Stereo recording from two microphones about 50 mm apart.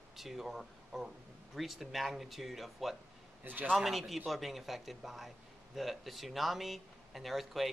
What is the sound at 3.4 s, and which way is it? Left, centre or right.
Speech, right.